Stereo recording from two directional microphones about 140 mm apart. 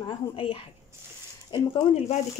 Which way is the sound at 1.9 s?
55° left (ahead or behind).